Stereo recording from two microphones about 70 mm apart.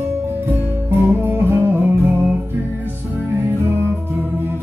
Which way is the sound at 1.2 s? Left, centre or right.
Right.